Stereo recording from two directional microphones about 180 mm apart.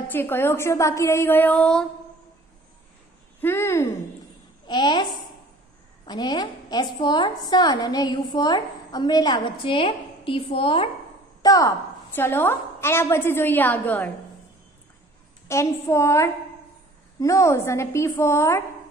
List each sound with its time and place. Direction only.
0.1 s a woman's voice: 10° left (ahead or behind)
3.3 s speech: 15° left (ahead or behind)
4.6 s a woman's voice: 25° left (ahead or behind)
11.4 s a woman's voice: 20° left (ahead or behind)
15.4 s a woman's voice: 15° left (ahead or behind)